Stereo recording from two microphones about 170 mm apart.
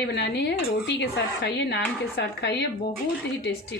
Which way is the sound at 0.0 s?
80° left.